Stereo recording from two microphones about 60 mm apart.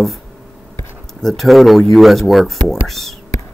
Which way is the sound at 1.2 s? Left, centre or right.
Centre.